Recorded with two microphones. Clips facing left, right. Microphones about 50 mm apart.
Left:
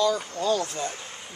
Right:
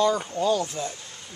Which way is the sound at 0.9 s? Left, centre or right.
Left.